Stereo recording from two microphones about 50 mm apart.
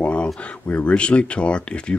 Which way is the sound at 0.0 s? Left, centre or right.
Left.